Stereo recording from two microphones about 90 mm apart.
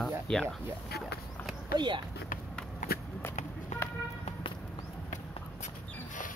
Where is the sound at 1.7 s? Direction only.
60° right (ahead or behind).